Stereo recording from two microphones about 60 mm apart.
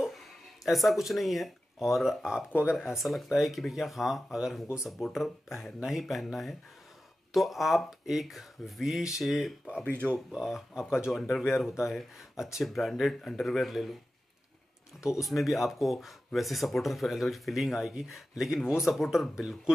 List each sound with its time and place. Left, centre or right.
0.7 s speech: centre
9.8 s speech: right
10.3 s speech: centre
15.2 s speech: centre